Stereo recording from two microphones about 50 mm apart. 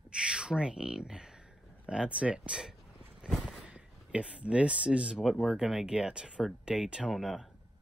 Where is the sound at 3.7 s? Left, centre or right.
Right.